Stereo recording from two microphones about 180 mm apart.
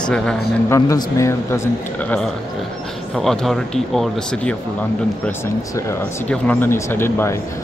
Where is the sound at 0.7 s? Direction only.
20° left (ahead or behind).